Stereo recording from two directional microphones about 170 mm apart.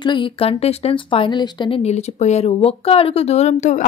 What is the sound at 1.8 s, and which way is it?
A woman's voice, 40° left (ahead or behind).